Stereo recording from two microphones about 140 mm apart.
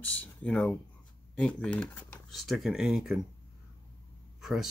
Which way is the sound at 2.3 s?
Centre (ahead or behind).